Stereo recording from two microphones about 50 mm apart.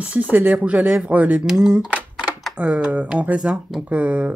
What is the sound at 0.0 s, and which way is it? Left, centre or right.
Speech, right.